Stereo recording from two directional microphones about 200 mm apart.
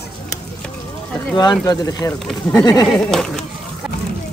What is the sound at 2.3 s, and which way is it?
Speech, centre (ahead or behind).